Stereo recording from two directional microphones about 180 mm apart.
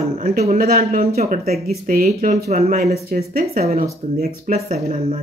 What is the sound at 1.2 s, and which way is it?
Speech, 40° right (ahead or behind).